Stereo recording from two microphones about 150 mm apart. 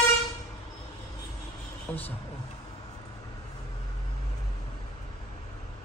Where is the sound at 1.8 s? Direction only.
10° left (ahead or behind).